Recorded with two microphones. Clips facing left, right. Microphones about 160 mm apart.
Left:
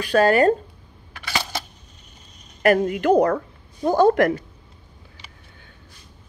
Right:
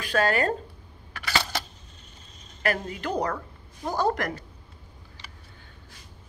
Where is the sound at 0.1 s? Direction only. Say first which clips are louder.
Left 8 dB; 40° left (ahead or behind).